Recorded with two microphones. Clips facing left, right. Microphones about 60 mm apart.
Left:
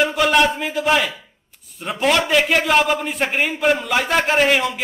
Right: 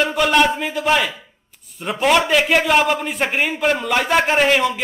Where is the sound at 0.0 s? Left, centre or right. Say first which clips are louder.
Even; centre.